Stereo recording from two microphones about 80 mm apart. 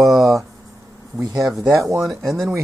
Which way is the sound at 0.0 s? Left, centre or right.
Right.